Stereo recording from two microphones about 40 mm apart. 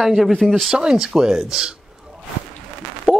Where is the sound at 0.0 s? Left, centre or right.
Centre.